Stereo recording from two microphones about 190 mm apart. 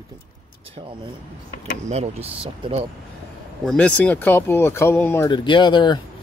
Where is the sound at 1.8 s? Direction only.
35° right (ahead or behind).